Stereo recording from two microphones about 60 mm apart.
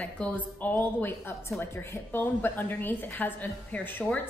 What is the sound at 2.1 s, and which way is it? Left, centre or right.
A woman's voice, left.